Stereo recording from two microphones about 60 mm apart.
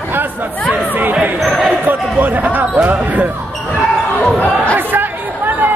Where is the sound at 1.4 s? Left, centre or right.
Centre.